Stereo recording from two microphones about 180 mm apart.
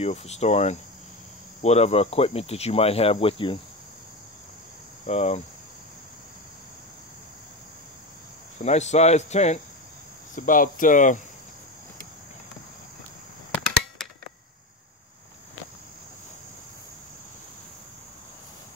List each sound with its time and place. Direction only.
0.0 s speech: 35° left (ahead or behind)
5.0 s speech: 35° left (ahead or behind)
8.6 s speech: 40° left (ahead or behind)
10.3 s cricket: 50° left (ahead or behind)